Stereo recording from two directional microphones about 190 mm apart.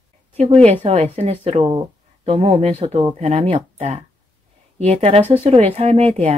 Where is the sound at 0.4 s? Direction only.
35° right (ahead or behind).